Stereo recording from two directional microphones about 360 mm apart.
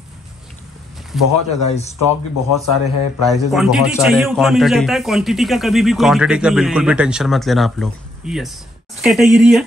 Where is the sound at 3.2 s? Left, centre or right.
Centre.